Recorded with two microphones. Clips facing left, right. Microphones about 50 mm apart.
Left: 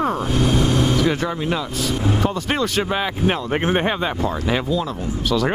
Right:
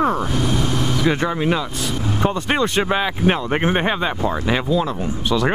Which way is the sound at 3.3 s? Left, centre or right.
Centre.